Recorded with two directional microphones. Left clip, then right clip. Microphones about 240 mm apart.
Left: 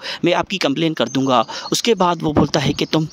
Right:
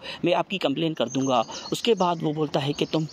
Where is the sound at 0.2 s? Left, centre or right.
Left.